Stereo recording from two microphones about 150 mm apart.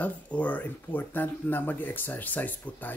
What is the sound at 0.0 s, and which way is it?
Speech, 10° left (ahead or behind).